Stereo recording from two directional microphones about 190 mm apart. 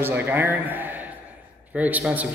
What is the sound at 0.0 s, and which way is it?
A man's voice, 10° right (ahead or behind).